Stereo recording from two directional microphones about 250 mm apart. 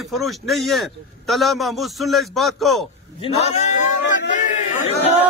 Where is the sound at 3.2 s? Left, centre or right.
Left.